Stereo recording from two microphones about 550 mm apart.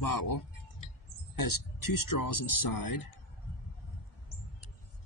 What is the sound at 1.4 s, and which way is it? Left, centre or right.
Speech, left.